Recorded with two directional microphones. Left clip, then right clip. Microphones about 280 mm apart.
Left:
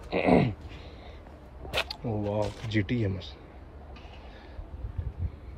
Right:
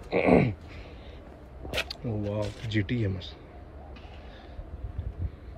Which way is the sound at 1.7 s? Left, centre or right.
Centre.